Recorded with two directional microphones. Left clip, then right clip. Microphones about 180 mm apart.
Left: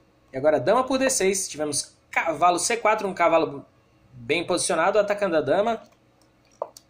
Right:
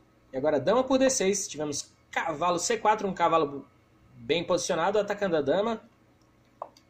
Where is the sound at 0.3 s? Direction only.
25° right (ahead or behind).